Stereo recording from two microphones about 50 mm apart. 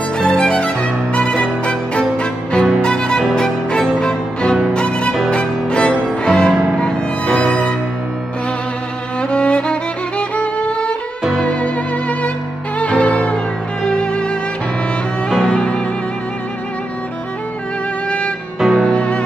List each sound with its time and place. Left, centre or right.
0.2 s music: centre
9.2 s music: left
15.2 s music: centre
18.6 s music: centre
18.9 s music: left